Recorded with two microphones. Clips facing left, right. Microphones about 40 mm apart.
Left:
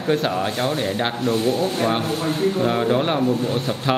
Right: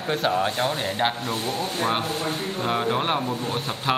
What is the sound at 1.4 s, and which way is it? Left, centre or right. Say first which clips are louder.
Speech: left 7 dB; left.